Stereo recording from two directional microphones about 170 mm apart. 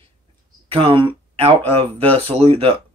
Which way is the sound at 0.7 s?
30° right (ahead or behind).